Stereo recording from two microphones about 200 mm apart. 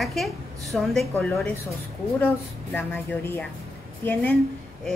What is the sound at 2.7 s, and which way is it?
Speech, 10° left (ahead or behind).